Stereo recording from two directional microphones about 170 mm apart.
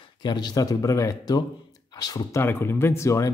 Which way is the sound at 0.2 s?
25° left (ahead or behind).